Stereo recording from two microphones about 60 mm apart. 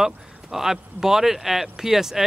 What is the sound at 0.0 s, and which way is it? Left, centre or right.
Speech, centre.